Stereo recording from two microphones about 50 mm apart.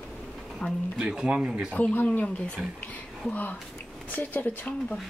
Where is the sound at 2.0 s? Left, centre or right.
Left.